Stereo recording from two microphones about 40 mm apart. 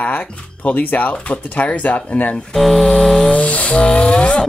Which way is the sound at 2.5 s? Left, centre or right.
Centre.